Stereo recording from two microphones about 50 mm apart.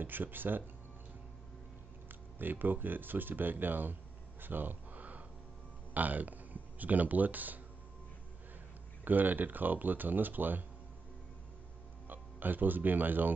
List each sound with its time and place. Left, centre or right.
0.0 s speech: right
2.0 s speech: right
4.4 s a sound: right
5.9 s speech: right
9.0 s speech: right
12.1 s speech: right